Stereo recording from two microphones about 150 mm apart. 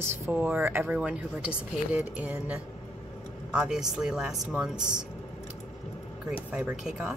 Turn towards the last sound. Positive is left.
turn(degrees=-5)  # may be behind; listen again after turning